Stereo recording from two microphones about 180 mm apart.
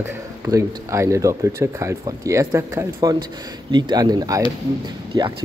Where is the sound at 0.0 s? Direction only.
15° right (ahead or behind).